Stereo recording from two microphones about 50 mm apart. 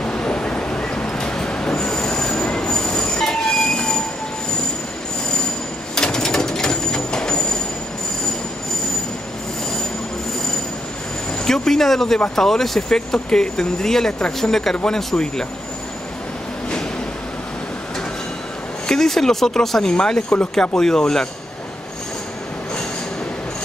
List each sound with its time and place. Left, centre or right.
0.0 s train: left
6.0 s a sound: centre
11.4 s vehicle: centre
12.4 s speech: centre
18.9 s speech: centre
20.7 s speech: centre